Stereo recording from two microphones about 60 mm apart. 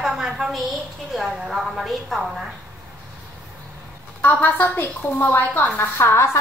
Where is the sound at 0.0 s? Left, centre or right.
Centre.